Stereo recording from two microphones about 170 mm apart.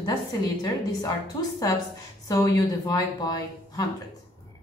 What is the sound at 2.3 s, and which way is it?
Speech, 20° left (ahead or behind).